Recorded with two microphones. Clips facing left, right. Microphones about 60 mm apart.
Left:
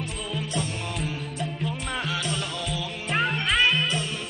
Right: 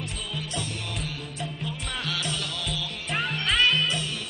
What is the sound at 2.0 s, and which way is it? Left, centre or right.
Music, centre.